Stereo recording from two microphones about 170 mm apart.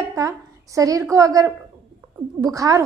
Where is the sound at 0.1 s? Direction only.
20° right (ahead or behind).